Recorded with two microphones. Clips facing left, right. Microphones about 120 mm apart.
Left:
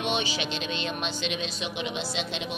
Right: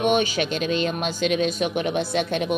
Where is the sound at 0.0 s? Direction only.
50° right (ahead or behind).